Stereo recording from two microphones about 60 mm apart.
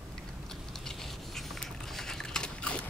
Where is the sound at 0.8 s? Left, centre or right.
Centre.